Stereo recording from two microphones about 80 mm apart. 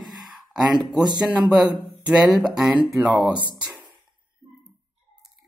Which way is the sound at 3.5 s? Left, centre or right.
Centre.